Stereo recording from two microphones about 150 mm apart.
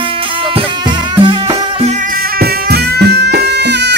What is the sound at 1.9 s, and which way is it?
Music, 60° right (ahead or behind).